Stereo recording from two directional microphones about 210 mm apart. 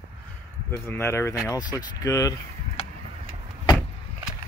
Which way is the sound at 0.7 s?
10° left (ahead or behind).